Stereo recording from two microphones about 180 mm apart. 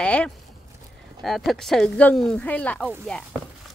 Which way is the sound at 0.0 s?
5° left (ahead or behind).